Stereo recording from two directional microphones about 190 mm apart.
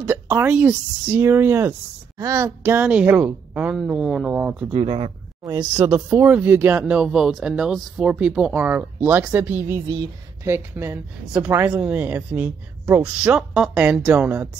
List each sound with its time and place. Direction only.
0.0 s speech: 10° right (ahead or behind)
4.7 s a woman's voice: 30° right (ahead or behind); by 14.5 s 10° right (ahead or behind)